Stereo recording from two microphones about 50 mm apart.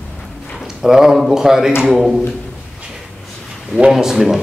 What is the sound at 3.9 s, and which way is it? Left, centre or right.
Speech, centre.